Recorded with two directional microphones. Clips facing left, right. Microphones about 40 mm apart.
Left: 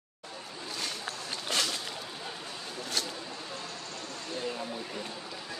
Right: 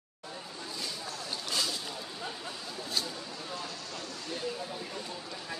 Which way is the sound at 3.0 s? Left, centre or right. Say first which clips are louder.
Even; left.